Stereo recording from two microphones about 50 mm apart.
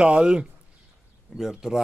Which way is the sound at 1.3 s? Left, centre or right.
Centre.